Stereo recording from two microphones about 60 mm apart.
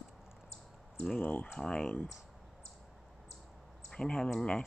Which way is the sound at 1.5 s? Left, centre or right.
Centre.